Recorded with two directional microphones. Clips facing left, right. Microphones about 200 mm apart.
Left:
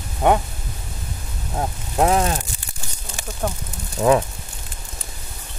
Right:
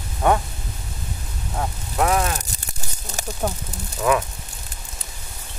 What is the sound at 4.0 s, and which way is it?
Speech, 30° left (ahead or behind).